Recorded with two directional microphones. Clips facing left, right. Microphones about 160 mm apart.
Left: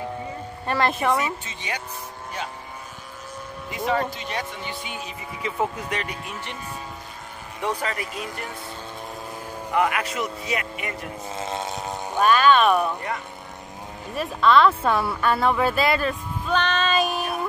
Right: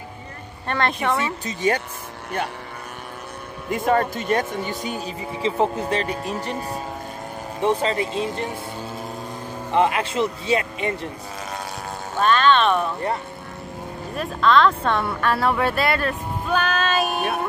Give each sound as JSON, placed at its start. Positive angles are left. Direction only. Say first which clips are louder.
{"t": 0.7, "sound": "speech", "louder": "even", "side_deg": 5}
{"t": 1.2, "sound": "speech", "louder": "right 7 dB", "side_deg": -40}
{"t": 3.7, "sound": "speech", "louder": "right 5 dB", "side_deg": -50}
{"t": 7.6, "sound": "speech", "louder": "right 7 dB", "side_deg": -25}
{"t": 9.7, "sound": "speech", "louder": "right 3 dB", "side_deg": -25}
{"t": 12.2, "sound": "speech", "louder": "even", "side_deg": 10}
{"t": 14.1, "sound": "speech", "louder": "even", "side_deg": 5}